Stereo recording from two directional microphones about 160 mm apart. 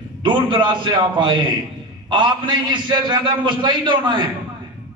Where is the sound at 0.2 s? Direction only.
30° right (ahead or behind).